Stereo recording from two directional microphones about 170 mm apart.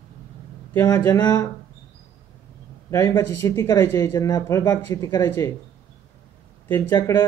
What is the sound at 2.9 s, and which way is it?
Speech, 15° left (ahead or behind).